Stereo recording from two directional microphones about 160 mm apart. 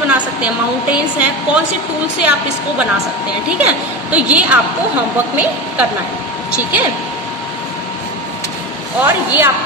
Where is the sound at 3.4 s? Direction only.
10° right (ahead or behind).